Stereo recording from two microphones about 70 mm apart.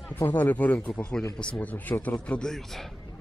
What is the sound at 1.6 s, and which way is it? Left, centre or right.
A man's voice, left.